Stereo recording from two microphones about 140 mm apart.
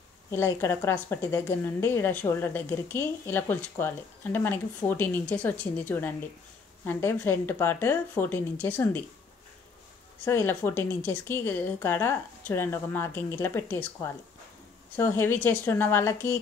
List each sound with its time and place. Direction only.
0.3 s a woman's voice: 20° left (ahead or behind)
10.2 s a woman's voice: 20° left (ahead or behind)